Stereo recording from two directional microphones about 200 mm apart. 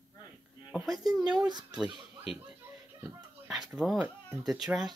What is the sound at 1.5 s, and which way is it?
Speech, 20° right (ahead or behind).